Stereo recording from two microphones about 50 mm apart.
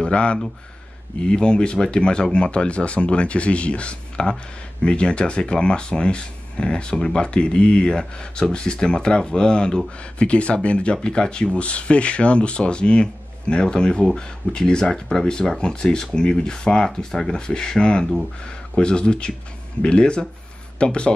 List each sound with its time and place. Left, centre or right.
0.0 s speech: left